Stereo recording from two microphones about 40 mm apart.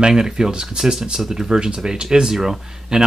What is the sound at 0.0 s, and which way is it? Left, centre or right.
Speech, centre.